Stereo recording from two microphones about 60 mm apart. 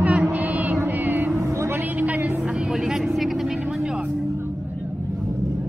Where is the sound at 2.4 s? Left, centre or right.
Centre.